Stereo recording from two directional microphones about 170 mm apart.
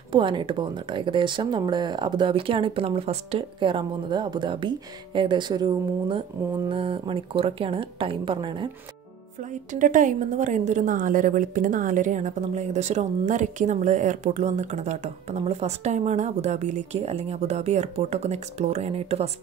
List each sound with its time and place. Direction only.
0.1 s speech: 30° right (ahead or behind)
9.4 s a woman's voice: 45° right (ahead or behind)